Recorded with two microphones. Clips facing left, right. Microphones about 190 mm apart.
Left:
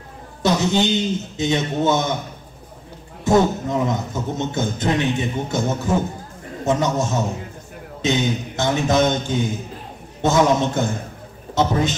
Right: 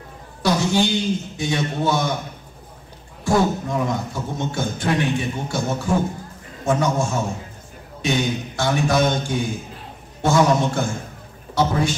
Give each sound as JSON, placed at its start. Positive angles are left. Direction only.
{"t": 0.4, "sound": "a man's voice", "side_deg": 20}
{"t": 3.3, "sound": "a man's voice", "side_deg": 20}